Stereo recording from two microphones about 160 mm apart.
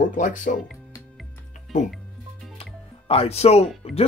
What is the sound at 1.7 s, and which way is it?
Speech, 50° left (ahead or behind).